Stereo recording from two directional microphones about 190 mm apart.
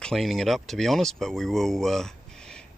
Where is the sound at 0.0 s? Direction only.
Centre (ahead or behind).